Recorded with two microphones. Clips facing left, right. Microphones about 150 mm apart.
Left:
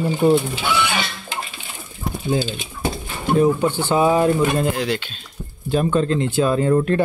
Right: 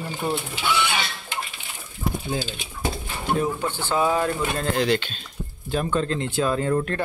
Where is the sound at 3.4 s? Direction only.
15° left (ahead or behind).